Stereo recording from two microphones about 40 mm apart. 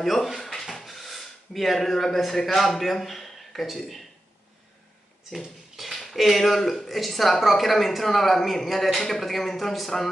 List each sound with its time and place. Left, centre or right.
0.0 s speech: centre
0.4 s drawer open or close: centre
0.8 s speech: centre
5.3 s speech: centre